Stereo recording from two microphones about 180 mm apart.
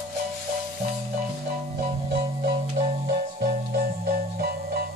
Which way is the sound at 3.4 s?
50° right (ahead or behind).